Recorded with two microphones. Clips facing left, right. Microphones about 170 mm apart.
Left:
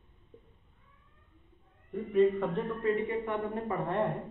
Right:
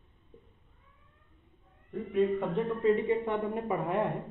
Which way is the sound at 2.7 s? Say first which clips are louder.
Right 7 dB; 25° right (ahead or behind).